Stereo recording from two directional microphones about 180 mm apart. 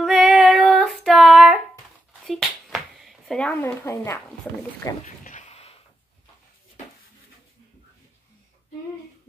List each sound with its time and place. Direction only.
0.0 s female singing: centre (ahead or behind)
2.2 s speech: centre (ahead or behind)
5.2 s a sound: 40° left (ahead or behind)